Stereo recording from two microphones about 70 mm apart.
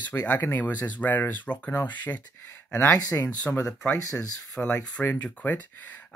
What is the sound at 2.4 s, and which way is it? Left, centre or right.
Speech, left.